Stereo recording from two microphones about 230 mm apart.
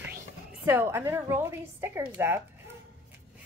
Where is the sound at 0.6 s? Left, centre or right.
Centre.